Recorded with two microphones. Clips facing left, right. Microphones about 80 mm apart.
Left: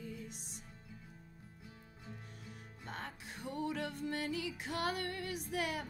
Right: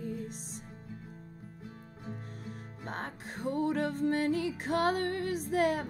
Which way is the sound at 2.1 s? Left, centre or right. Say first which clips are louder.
Right 9 dB; right.